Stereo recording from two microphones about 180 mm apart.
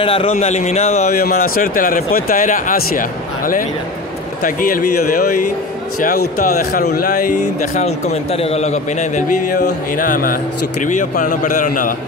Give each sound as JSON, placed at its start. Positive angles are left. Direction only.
{"t": 0.0, "sound": "speech", "side_deg": 30}
{"t": 1.1, "sound": "speech", "side_deg": 55}
{"t": 7.2, "sound": "speech", "side_deg": 45}